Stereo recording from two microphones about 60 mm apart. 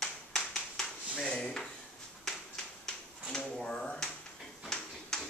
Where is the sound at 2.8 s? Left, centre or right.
Centre.